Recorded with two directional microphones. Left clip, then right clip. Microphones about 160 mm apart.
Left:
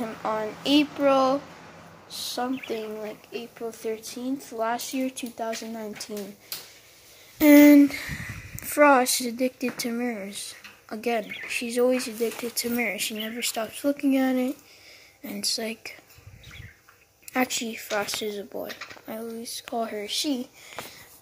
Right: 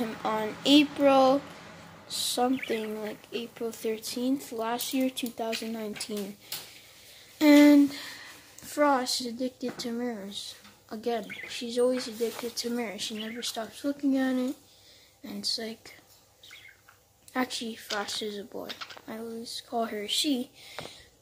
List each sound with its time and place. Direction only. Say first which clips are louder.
0.0 s speech: left 2 dB; 20° right (ahead or behind)
7.3 s speech: left 4 dB; 15° left (ahead or behind)
17.3 s speech: left 5 dB; 10° left (ahead or behind)
19.8 s speech: even; 10° right (ahead or behind)